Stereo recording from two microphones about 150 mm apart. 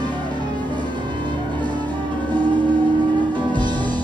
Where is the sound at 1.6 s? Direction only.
10° left (ahead or behind).